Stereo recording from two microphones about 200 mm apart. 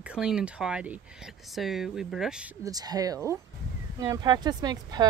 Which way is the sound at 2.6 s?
20° right (ahead or behind).